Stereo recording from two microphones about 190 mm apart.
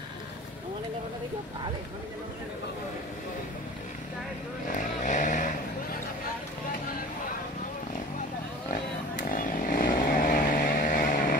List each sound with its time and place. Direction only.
4.7 s vehicle: 40° left (ahead or behind)
9.3 s vehicle: 45° left (ahead or behind)